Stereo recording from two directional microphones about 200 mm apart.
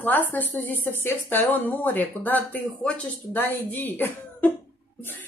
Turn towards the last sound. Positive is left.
turn(degrees=10)  # may be behind; listen again after turning